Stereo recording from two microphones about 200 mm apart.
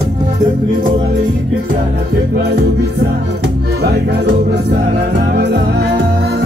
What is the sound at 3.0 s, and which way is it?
Music, 55° right (ahead or behind).